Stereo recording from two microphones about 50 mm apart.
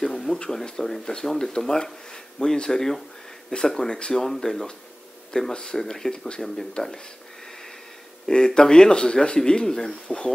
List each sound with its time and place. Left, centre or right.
0.0 s a sound: centre
0.4 s speech: centre
8.3 s speech: centre